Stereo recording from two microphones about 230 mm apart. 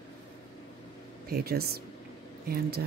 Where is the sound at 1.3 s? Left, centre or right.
Right.